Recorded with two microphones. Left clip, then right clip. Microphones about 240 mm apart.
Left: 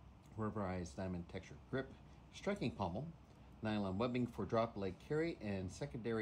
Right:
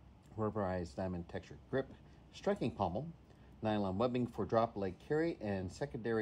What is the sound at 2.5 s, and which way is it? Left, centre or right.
Speech, centre.